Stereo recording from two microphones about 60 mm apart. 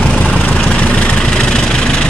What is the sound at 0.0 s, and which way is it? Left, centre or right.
Vehicle, left.